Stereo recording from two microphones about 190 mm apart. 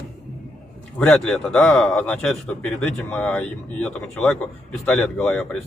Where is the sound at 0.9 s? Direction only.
5° left (ahead or behind).